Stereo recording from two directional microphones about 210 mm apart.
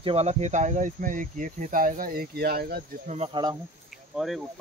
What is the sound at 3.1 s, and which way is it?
Speech, 25° right (ahead or behind).